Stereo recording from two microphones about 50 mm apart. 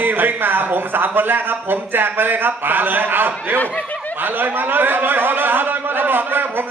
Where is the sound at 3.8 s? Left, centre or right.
Left.